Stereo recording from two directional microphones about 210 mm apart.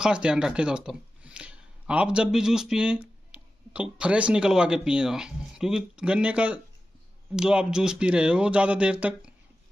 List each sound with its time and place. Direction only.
0.0 s speech: 5° right (ahead or behind)